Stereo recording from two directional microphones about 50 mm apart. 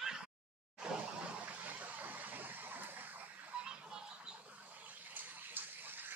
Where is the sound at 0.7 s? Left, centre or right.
Right.